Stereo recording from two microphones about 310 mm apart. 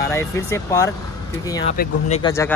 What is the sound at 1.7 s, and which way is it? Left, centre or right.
Speech, left.